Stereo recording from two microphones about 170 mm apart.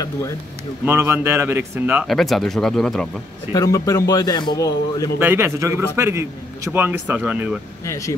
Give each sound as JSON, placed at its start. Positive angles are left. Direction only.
{"t": 0.8, "sound": "a man's voice", "side_deg": -15}
{"t": 2.0, "sound": "speech", "side_deg": 0}
{"t": 3.5, "sound": "a man's voice", "side_deg": 20}
{"t": 5.2, "sound": "a man's voice", "side_deg": -15}
{"t": 7.8, "sound": "speech", "side_deg": 20}